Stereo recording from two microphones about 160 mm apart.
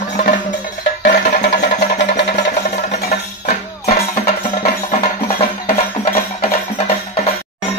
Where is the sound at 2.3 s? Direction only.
50° left (ahead or behind).